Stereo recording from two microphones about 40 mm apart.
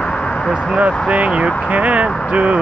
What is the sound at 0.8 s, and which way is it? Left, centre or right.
Speech, right.